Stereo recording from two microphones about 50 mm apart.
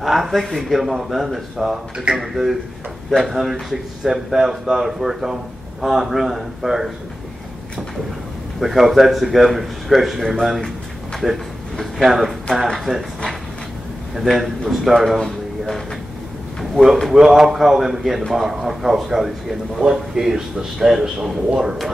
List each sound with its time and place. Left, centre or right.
0.0 s a man's voice: centre
8.5 s speech: centre
12.6 s speech: centre
14.2 s speech: centre
16.7 s a man's voice: centre